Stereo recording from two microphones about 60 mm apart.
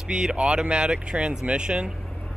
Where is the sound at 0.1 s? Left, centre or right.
Centre.